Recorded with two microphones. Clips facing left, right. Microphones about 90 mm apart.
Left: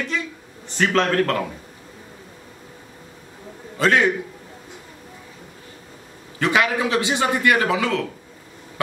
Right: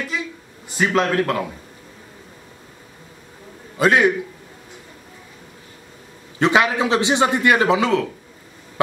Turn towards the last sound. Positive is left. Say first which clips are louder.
# right 3 dB
turn(degrees=-20)  # may be behind; listen again after turning